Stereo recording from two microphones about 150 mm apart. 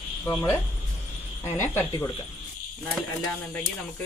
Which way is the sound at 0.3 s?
20° left (ahead or behind).